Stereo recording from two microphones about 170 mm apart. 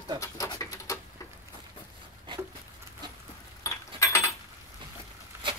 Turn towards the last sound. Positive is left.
turn(degrees=-30)  # may be behind; listen again after turning